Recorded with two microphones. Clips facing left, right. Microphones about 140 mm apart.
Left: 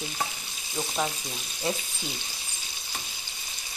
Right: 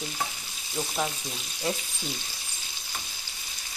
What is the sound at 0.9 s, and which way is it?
Frying, 5° left (ahead or behind).